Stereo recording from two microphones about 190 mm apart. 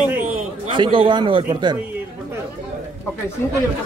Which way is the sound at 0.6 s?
25° right (ahead or behind).